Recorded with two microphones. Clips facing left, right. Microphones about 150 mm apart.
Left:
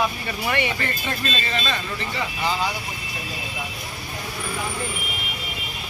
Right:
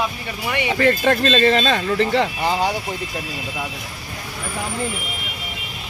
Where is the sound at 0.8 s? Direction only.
90° right.